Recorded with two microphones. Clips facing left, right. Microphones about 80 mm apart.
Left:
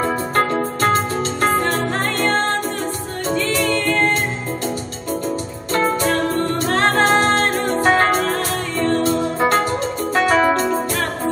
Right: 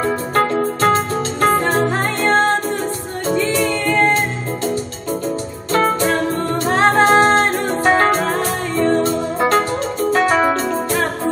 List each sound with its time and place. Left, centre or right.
0.0 s music: centre
3.3 s music: centre
5.7 s music: centre
6.6 s music: centre
7.5 s music: centre
9.0 s music: centre
10.1 s music: centre